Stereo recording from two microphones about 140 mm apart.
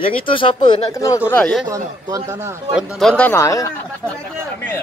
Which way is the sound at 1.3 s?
10° left (ahead or behind).